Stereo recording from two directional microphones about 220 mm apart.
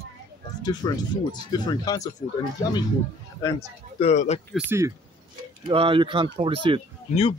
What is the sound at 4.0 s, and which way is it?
Speech, 30° left (ahead or behind).